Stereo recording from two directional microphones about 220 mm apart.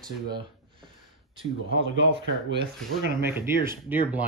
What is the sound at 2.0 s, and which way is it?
Speech, 50° right (ahead or behind).